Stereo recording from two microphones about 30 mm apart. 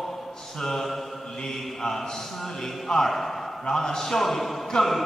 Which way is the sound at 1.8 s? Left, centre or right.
Centre.